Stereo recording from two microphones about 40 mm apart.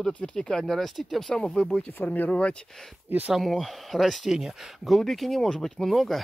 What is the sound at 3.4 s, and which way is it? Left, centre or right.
Speech, centre.